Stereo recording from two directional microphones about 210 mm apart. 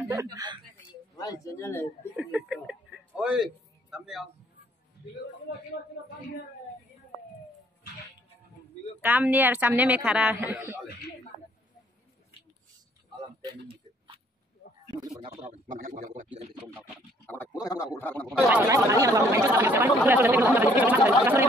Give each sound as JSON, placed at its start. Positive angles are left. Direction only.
{"t": 0.1, "sound": "speech", "side_deg": -15}
{"t": 1.1, "sound": "speech", "side_deg": 20}
{"t": 2.1, "sound": "a man's voice", "side_deg": -5}
{"t": 5.0, "sound": "a sound", "side_deg": 50}
{"t": 9.0, "sound": "speech", "side_deg": -10}
{"t": 13.7, "sound": "a sound", "side_deg": -25}
{"t": 15.3, "sound": "a man's voice", "side_deg": -35}
{"t": 17.3, "sound": "speech", "side_deg": 15}
{"t": 18.5, "sound": "speech", "side_deg": -15}